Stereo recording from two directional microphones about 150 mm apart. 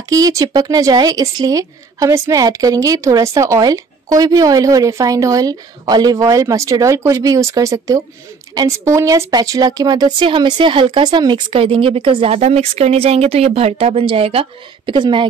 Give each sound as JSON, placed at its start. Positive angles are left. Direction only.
{"t": 0.1, "sound": "speech", "side_deg": -20}